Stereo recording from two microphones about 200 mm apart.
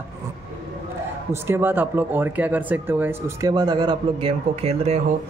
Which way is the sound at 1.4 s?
10° right (ahead or behind).